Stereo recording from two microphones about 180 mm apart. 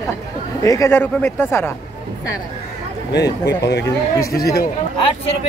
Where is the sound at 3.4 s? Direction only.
70° left (ahead or behind).